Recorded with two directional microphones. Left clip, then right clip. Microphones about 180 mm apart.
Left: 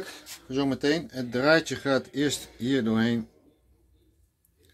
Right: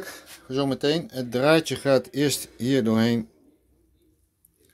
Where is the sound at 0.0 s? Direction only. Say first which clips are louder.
Right 1 dB; 45° right (ahead or behind).